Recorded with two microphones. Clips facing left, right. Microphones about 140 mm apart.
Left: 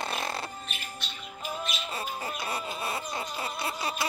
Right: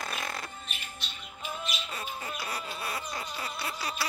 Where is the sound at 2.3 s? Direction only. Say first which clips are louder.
Left 3 dB; 25° left (ahead or behind).